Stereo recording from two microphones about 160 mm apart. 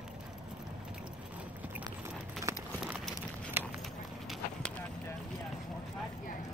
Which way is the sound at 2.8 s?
5° right (ahead or behind).